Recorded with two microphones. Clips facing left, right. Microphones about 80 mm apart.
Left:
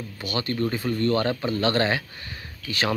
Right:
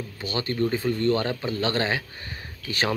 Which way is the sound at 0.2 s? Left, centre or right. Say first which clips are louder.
Even; right.